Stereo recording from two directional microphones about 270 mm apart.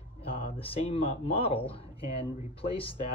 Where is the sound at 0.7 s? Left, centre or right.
Left.